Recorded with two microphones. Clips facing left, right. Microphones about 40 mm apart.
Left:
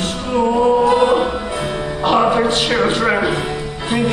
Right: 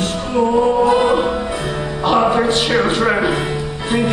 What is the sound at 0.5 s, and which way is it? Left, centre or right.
Choir, centre.